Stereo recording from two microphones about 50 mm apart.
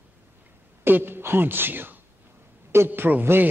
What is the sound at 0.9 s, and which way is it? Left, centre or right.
Speech, right.